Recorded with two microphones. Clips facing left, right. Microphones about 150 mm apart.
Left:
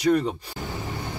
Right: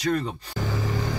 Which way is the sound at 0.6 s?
90° right.